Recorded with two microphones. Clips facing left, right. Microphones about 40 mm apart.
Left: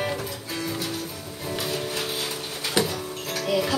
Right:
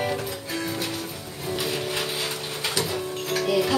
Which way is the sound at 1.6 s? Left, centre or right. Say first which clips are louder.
Right 1 dB; right.